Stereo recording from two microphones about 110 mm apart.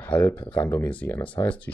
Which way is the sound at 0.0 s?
15° left (ahead or behind).